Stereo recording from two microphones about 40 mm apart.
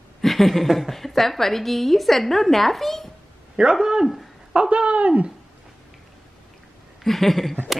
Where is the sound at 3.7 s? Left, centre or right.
Centre.